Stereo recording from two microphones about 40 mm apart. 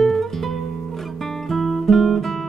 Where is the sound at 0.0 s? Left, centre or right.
Centre.